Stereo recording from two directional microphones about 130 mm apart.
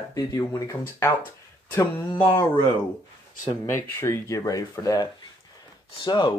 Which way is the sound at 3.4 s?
25° left (ahead or behind).